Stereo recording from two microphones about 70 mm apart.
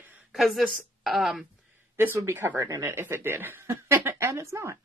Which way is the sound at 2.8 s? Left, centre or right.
Right.